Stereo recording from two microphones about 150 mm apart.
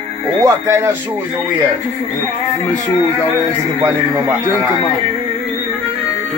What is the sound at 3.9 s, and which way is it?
Speech, 20° right (ahead or behind).